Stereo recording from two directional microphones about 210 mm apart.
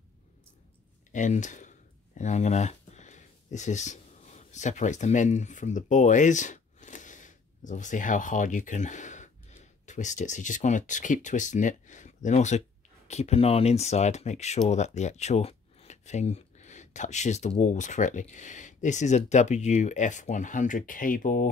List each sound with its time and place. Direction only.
1.1 s speech: 35° left (ahead or behind)